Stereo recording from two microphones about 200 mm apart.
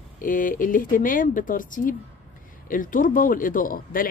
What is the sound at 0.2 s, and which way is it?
Speech, 45° left (ahead or behind).